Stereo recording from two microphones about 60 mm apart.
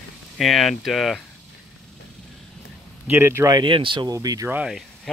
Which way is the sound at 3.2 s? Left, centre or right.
Right.